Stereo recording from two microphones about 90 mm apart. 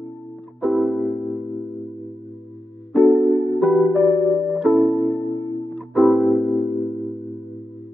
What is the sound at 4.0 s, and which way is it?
Music, 20° left (ahead or behind).